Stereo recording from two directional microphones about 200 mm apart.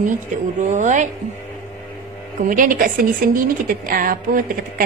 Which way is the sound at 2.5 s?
40° right (ahead or behind).